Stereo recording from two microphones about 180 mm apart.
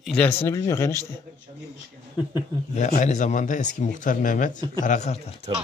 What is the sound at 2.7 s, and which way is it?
Speech, 40° left (ahead or behind).